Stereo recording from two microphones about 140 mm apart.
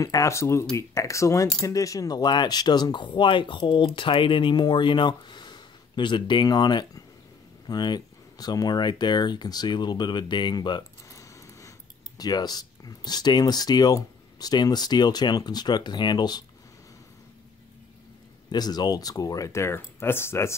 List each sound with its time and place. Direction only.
0.0 s speech: 25° left (ahead or behind)
18.5 s speech: 30° left (ahead or behind)